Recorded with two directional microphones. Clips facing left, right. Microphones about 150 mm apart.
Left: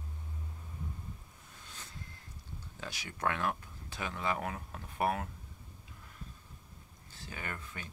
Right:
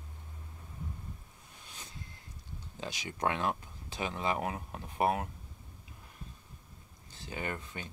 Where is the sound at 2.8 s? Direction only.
20° right (ahead or behind).